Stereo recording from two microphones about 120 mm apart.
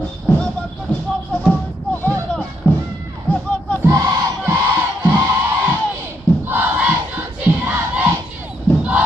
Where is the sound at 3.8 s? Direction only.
30° right (ahead or behind).